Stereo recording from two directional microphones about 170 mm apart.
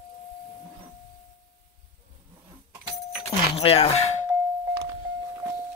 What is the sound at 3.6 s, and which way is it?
Doorbell, 35° left (ahead or behind).